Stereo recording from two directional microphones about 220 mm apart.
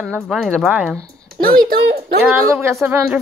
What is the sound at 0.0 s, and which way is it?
Speech, 5° right (ahead or behind).